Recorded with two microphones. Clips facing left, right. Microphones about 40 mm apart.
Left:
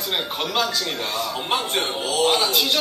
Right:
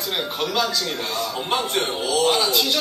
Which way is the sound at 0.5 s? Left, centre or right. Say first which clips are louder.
Left 1 dB; left.